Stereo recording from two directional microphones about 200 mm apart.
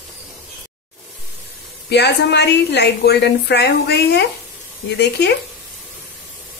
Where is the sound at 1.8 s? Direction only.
55° left (ahead or behind).